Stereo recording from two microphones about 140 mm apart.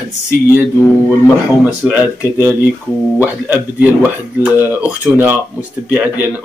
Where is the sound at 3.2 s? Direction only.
10° right (ahead or behind).